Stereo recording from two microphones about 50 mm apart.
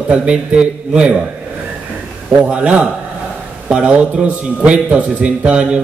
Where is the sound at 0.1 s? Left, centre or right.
Right.